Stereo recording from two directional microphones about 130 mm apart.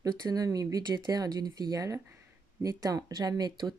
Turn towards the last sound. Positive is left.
turn(degrees=-30)  # may be behind; listen again after turning